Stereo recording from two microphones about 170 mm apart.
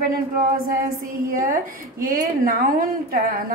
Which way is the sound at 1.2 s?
55° right (ahead or behind).